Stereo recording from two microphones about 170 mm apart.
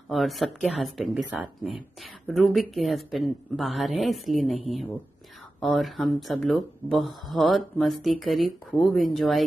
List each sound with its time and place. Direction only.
0.1 s speech: centre (ahead or behind)